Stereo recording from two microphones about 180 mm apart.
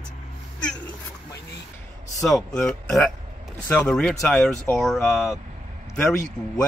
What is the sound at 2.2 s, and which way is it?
Speech, 5° left (ahead or behind).